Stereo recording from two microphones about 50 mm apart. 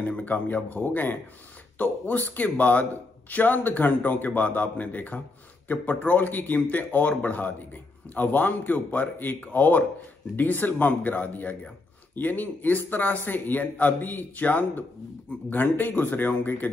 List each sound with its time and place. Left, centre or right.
0.0 s a man's voice: left